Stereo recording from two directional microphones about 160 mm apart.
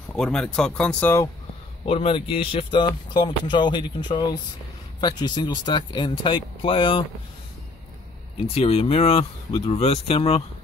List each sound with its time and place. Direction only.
0.1 s speech: 5° left (ahead or behind)
1.9 s speech: 35° left (ahead or behind)
8.5 s speech: 40° left (ahead or behind)